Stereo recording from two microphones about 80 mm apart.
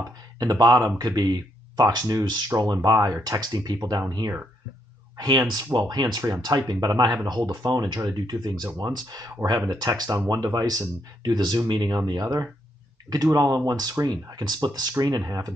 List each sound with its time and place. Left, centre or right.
0.4 s speech: right
5.1 s speech: right
12.1 s speech: right